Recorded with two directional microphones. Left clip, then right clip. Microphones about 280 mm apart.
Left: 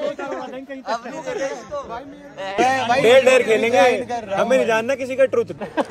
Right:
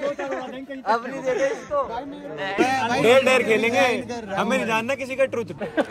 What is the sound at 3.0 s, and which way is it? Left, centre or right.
A man's voice, centre.